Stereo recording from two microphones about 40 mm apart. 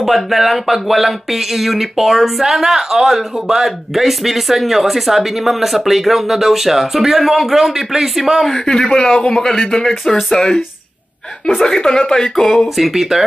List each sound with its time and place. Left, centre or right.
0.0 s speech: centre
8.5 s speech: centre
12.7 s speech: centre